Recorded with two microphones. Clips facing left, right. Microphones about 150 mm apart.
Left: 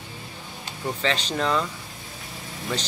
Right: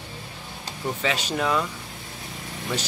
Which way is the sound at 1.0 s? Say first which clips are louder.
Even; 10° right (ahead or behind).